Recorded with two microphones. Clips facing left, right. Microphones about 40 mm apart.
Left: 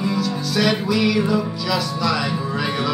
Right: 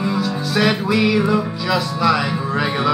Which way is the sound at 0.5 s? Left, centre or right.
Right.